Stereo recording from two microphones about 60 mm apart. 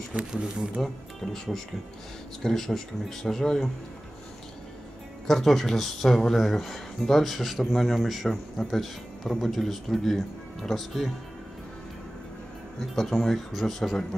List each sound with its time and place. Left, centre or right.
0.1 s speech: centre
0.7 s speech: centre
5.2 s speech: centre
12.9 s speech: centre